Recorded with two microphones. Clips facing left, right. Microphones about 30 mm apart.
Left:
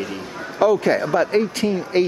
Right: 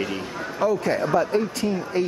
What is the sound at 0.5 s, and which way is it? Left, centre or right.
Speech, left.